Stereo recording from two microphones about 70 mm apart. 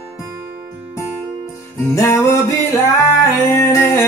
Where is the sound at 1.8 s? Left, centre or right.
Left.